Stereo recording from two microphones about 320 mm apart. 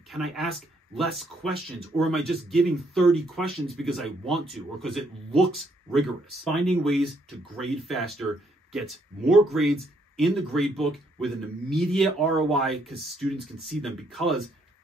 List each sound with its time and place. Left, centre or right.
0.1 s speech: centre